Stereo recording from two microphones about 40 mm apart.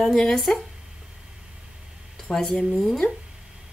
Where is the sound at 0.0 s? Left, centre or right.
Centre.